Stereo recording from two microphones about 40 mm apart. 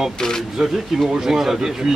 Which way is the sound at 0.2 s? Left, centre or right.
Centre.